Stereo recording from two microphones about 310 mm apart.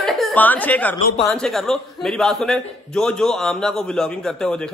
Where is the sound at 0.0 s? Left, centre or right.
Centre.